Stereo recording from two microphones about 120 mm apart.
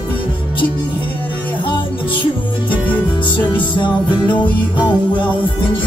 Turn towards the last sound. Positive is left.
turn(degrees=40)  # may be behind; listen again after turning